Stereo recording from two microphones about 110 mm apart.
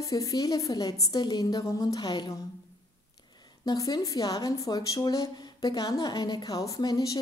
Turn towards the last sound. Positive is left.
turn(degrees=35)  # may be behind; listen again after turning